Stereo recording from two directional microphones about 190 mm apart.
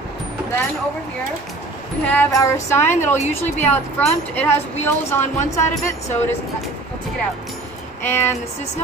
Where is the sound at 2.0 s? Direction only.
10° left (ahead or behind).